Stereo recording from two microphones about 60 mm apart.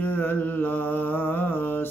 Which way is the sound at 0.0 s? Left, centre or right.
Left.